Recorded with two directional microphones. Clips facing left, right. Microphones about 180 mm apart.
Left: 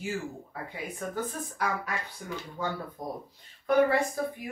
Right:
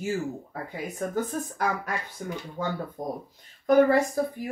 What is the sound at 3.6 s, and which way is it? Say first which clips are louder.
Speech: right 4 dB; 40° right (ahead or behind).